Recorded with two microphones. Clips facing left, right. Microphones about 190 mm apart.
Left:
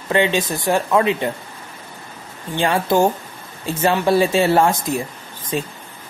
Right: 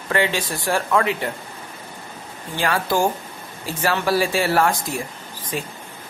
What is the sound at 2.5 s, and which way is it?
Speech, 25° left (ahead or behind).